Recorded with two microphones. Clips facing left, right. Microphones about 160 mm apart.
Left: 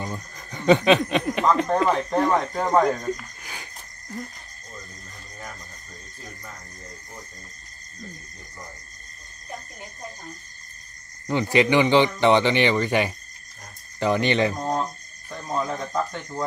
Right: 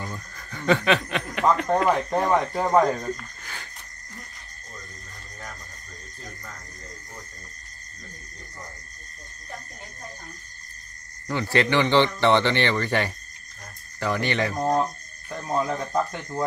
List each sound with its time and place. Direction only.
0.0 s speech: 20° left (ahead or behind)
1.9 s speech: 5° right (ahead or behind)
11.2 s speech: 15° left (ahead or behind)
14.8 s speech: 10° right (ahead or behind)